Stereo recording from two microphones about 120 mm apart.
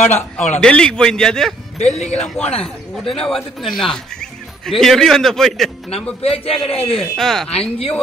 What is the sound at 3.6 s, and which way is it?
Speech, 5° left (ahead or behind).